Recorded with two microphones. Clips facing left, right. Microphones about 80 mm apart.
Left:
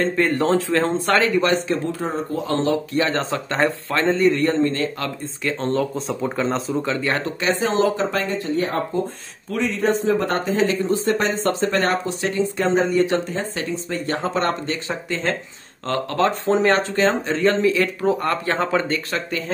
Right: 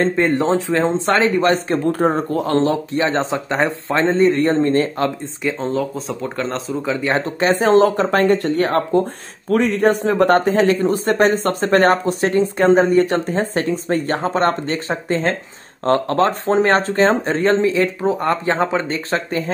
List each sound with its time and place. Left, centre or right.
0.0 s a man's voice: right
1.3 s speech: right
3.0 s a man's voice: right
4.1 s speech: right
5.4 s speech: centre
5.7 s speech: centre
6.9 s speech: centre; by 9.0 s right
9.5 s speech: right